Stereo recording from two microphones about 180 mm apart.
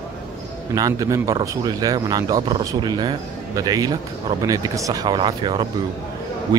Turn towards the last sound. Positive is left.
turn(degrees=-20)  # may be behind; listen again after turning